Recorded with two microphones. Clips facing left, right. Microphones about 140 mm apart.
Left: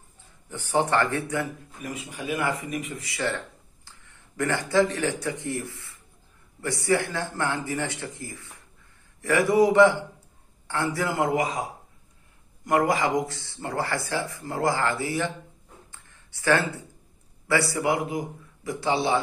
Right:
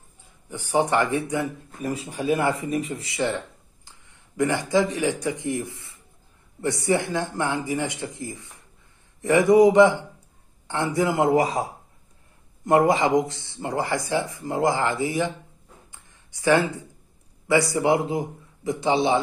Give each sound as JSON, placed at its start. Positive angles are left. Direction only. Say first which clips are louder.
{"t": 0.2, "sound": "a man's voice", "louder": "right 2 dB", "side_deg": -10}
{"t": 1.8, "sound": "speech", "louder": "right 7 dB", "side_deg": -30}
{"t": 11.3, "sound": "speech", "louder": "right 5 dB", "side_deg": -35}
{"t": 12.6, "sound": "speech", "louder": "right 4 dB", "side_deg": -25}
{"t": 15.9, "sound": "a sound", "louder": "even", "side_deg": -15}
{"t": 17.5, "sound": "speech", "louder": "right 4 dB", "side_deg": -20}